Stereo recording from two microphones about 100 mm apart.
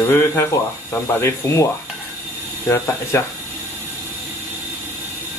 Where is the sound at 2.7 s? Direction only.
25° left (ahead or behind).